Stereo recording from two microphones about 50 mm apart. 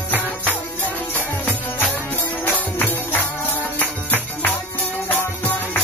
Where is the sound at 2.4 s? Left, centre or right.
Left.